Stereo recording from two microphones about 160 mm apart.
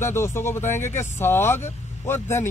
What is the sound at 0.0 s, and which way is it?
Speech, 15° left (ahead or behind).